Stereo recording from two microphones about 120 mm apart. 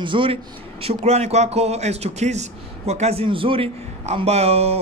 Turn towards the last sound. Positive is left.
turn(degrees=-60)  # may be behind; listen again after turning